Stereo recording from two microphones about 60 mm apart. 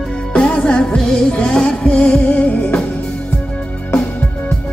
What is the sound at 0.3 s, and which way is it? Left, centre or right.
Music, centre.